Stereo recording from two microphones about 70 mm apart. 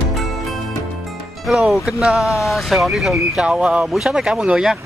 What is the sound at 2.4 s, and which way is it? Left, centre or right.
Speech, centre.